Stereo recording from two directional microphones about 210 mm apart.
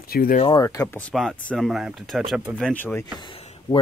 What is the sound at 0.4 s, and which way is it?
Speech, 20° left (ahead or behind).